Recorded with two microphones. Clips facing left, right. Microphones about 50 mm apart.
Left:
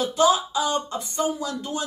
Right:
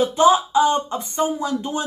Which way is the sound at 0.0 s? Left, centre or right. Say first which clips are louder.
Right 5 dB; right.